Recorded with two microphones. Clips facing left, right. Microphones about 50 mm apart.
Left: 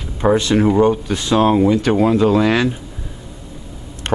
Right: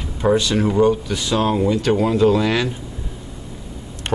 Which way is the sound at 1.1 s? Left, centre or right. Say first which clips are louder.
Left 5 dB; left.